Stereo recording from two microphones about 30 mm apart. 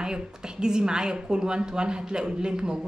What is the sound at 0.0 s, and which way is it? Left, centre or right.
A woman's voice, right.